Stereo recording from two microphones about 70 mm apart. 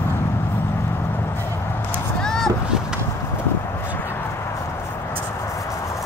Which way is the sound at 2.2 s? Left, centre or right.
Centre.